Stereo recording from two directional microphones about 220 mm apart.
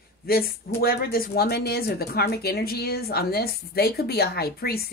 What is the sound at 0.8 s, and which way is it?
Speech, 45° left (ahead or behind).